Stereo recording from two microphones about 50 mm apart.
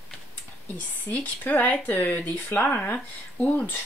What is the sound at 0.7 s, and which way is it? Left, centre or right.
Speech, left.